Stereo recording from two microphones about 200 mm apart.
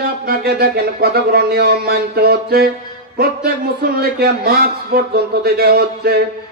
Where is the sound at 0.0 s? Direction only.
50° right (ahead or behind).